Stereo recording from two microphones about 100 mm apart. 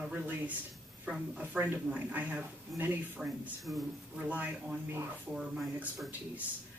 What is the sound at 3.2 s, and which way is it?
Speech, centre (ahead or behind).